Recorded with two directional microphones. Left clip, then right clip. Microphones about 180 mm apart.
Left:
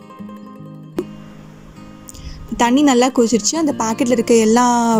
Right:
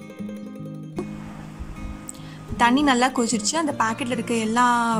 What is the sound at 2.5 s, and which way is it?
A woman's voice, 20° left (ahead or behind).